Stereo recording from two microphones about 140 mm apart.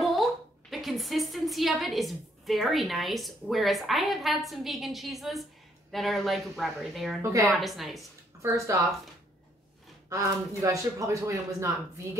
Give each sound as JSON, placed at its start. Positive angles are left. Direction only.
{"t": 0.0, "sound": "a woman's voice", "side_deg": 0}
{"t": 8.4, "sound": "speech", "side_deg": -20}
{"t": 10.0, "sound": "speech", "side_deg": -20}